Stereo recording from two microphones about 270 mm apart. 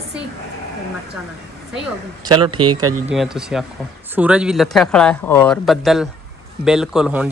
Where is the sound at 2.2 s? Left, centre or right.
Centre.